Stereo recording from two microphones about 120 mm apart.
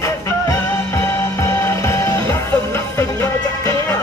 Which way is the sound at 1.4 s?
25° left (ahead or behind).